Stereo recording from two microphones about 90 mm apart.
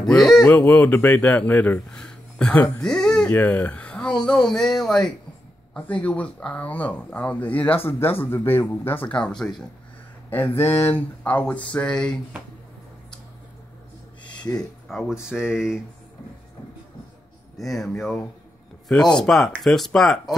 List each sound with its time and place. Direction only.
0.0 s speech: 5° left (ahead or behind)
0.7 s speech: 20° left (ahead or behind)
3.3 s speech: 20° left (ahead or behind)
4.2 s speech: 5° left (ahead or behind)
10.7 s speech: 20° left (ahead or behind)
14.3 s a sound: 10° left (ahead or behind)
15.2 s speech: 10° right (ahead or behind)
17.6 s speech: centre (ahead or behind)